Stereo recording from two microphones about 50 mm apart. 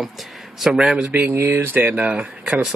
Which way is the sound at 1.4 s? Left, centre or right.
Right.